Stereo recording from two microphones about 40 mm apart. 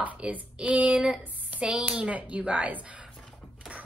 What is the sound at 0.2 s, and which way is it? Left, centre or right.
Speech, right.